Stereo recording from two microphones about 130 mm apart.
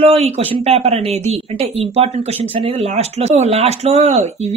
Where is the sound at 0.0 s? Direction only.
50° right (ahead or behind).